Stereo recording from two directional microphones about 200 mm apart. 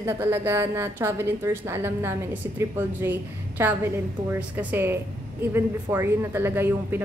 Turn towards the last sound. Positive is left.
turn(degrees=-10)  # may be behind; listen again after turning